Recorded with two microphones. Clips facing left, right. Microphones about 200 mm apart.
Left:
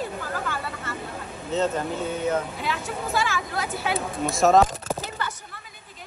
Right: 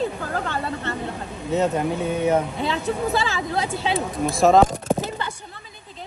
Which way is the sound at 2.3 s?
30° right (ahead or behind).